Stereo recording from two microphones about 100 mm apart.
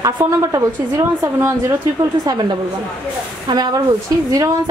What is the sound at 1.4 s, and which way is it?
Speech, 30° right (ahead or behind).